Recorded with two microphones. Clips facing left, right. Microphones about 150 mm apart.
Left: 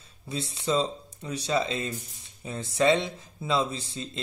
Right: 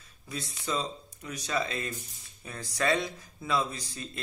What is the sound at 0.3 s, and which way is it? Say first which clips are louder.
Speech: left 6 dB; 30° left (ahead or behind).